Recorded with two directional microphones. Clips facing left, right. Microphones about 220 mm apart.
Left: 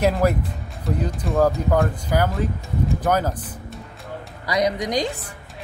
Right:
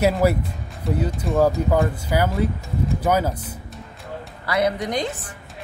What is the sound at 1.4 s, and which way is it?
Speech, 5° right (ahead or behind).